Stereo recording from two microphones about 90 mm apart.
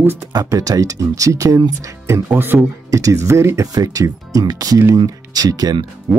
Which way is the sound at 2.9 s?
40° right (ahead or behind).